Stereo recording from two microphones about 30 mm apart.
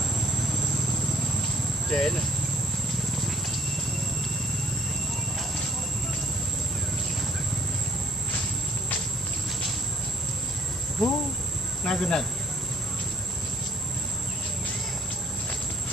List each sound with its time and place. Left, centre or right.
1.9 s speech: left
11.0 s insect: centre
11.8 s cricket: left